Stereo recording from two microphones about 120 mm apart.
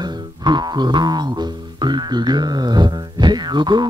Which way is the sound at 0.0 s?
35° right (ahead or behind).